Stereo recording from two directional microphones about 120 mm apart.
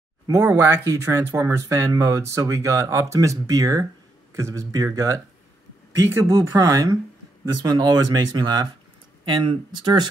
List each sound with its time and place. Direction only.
0.3 s speech: 25° right (ahead or behind)
6.2 s speech: 20° right (ahead or behind)
6.5 s speech: 35° right (ahead or behind)